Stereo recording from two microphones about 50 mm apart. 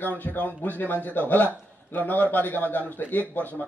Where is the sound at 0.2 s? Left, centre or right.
Left.